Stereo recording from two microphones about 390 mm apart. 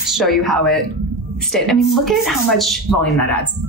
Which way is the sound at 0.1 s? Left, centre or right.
Centre.